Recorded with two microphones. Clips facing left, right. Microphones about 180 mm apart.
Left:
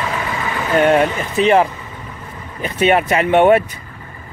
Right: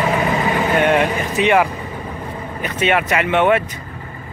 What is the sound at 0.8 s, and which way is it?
Speech, 35° left (ahead or behind).